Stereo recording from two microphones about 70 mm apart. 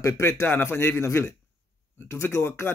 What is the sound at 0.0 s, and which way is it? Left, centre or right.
Speech, left.